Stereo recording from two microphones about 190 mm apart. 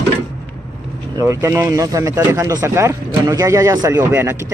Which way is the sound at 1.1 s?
15° right (ahead or behind).